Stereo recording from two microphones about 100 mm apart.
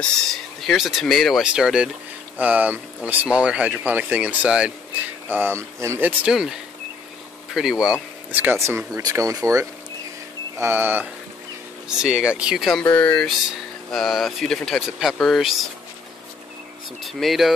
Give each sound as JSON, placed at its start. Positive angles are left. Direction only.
{"t": 0.0, "sound": "speech", "side_deg": 5}
{"t": 5.3, "sound": "speech", "side_deg": -25}
{"t": 6.3, "sound": "speech", "side_deg": -5}
{"t": 8.3, "sound": "speech", "side_deg": -15}
{"t": 8.5, "sound": "speech", "side_deg": -30}
{"t": 10.6, "sound": "speech", "side_deg": -25}
{"t": 11.9, "sound": "speech", "side_deg": -5}
{"t": 12.8, "sound": "speech", "side_deg": 15}
{"t": 13.9, "sound": "speech", "side_deg": 0}
{"t": 17.0, "sound": "speech", "side_deg": 0}